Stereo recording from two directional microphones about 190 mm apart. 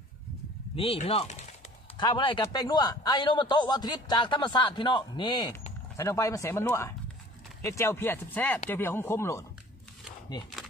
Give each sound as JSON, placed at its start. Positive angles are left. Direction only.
{"t": 0.7, "sound": "a man's voice", "side_deg": 30}